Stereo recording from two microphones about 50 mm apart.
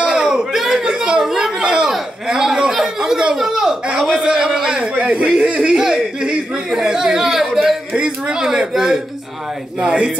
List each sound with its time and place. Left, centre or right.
0.0 s a sound: centre
4.1 s speech: centre
7.9 s speech: centre